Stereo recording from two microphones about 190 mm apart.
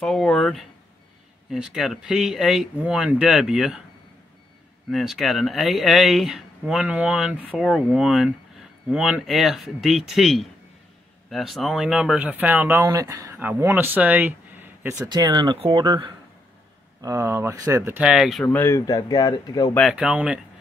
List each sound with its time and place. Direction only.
0.0 s speech: centre (ahead or behind)
4.9 s speech: centre (ahead or behind)
15.0 s speech: 20° right (ahead or behind); by 19.7 s 20° left (ahead or behind)
19.7 s speech: centre (ahead or behind)